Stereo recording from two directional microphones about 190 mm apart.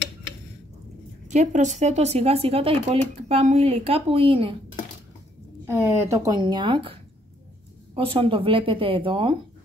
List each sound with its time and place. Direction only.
1.3 s speech: 40° right (ahead or behind)
5.7 s speech: 15° right (ahead or behind)